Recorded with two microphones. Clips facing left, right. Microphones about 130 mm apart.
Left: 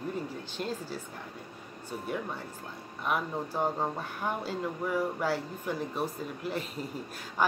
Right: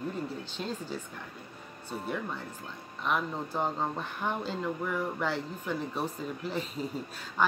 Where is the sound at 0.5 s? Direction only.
10° left (ahead or behind).